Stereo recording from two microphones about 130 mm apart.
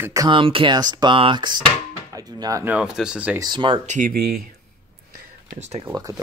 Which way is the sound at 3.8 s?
70° right (ahead or behind).